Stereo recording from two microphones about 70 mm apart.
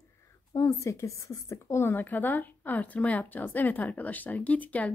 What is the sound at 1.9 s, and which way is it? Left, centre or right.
A woman's voice, left.